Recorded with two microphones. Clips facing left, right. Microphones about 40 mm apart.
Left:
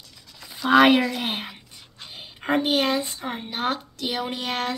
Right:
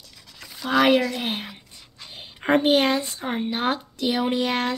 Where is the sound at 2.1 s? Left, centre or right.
Centre.